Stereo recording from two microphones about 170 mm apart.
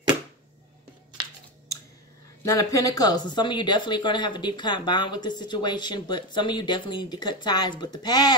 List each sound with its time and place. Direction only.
2.4 s speech: 20° left (ahead or behind)